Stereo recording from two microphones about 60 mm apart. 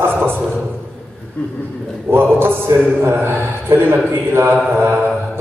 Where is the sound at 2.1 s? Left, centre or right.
Right.